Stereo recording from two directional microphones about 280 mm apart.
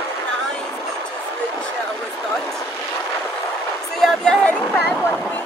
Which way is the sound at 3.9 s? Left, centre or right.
Centre.